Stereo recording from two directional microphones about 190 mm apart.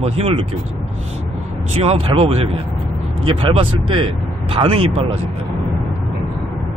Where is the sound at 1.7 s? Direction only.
30° right (ahead or behind).